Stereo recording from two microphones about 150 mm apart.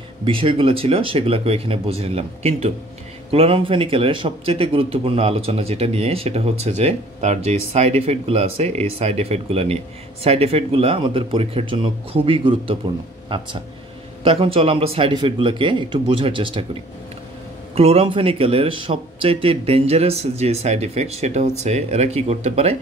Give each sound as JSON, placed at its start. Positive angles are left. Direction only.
{"t": 0.2, "sound": "speech", "side_deg": -35}
{"t": 17.7, "sound": "speech", "side_deg": -40}